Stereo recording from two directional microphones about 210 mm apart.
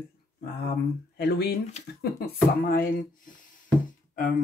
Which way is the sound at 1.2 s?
50° left (ahead or behind).